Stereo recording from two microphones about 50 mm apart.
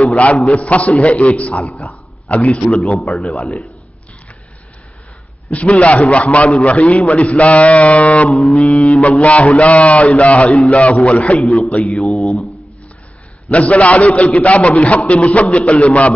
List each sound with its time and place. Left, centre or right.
0.0 s a sound: left
0.5 s a man's voice: left
3.0 s mantra: centre
5.5 s a man's voice: left
8.3 s mantra: centre
9.2 s a man's voice: left
11.4 s a man's voice: centre
11.7 s a man's voice: left
12.0 s mantra: centre
13.5 s a man's voice: left